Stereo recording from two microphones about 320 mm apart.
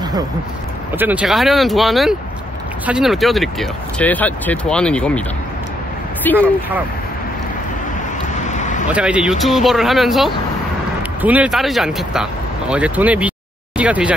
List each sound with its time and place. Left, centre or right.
0.9 s speech: centre
6.2 s speech: centre
8.4 s vehicle: left
8.8 s speech: centre